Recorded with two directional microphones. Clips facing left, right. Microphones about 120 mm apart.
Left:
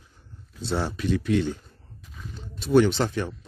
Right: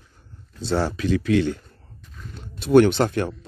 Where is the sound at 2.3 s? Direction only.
65° right (ahead or behind).